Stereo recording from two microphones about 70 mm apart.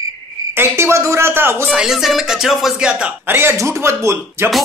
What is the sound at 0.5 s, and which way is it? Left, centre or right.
Speech, right.